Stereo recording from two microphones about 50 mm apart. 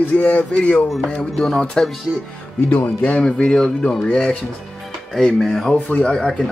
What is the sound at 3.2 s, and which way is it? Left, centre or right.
Speech, centre.